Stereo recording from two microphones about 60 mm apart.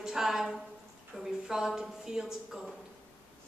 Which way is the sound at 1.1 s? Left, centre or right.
Centre.